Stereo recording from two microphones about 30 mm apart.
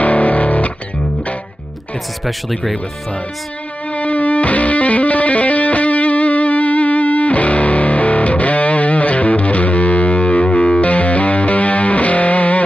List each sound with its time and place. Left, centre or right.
0.0 s music: left
2.2 s speech: centre
3.9 s music: left